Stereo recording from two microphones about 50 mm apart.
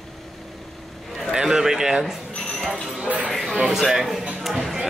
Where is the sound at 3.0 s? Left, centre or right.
Right.